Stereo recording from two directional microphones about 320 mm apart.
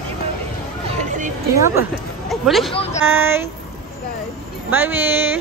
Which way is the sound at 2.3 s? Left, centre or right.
Centre.